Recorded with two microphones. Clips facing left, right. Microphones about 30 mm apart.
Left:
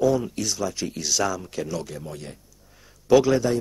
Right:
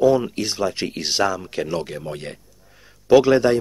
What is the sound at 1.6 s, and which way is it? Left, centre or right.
Speech, right.